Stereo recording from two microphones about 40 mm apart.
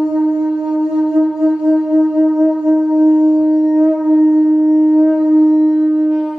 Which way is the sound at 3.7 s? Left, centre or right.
Centre.